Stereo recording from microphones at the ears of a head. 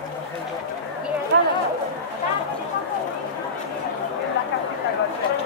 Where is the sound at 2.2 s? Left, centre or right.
Left.